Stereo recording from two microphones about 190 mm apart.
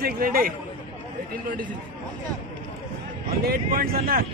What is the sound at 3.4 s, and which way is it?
Speech, 50° right (ahead or behind).